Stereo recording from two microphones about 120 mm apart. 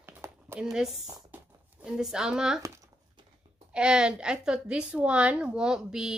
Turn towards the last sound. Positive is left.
turn(degrees=-5)  # may be behind; listen again after turning